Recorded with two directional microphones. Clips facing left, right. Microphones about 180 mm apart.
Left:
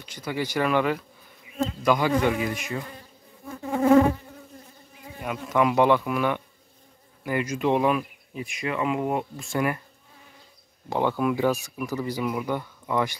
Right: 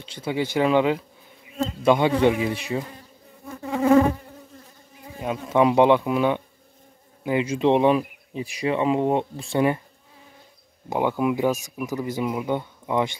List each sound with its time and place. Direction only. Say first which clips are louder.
0.0 s speech: right 4 dB; 25° right (ahead or behind)
5.2 s speech: right 4 dB; 25° right (ahead or behind)
10.9 s speech: right 2 dB; 15° right (ahead or behind)